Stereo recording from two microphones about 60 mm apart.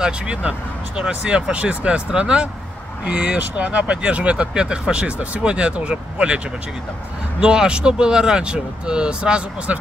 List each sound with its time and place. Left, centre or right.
0.0 s speech: centre
7.4 s speech: centre